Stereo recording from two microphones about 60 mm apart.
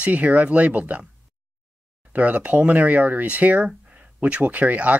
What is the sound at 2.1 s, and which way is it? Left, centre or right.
Speech, right.